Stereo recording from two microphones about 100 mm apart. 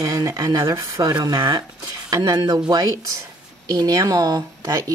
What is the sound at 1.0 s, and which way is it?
Speech, 45° right (ahead or behind).